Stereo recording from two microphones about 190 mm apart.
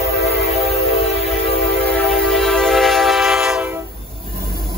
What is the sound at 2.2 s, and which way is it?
Train, centre (ahead or behind).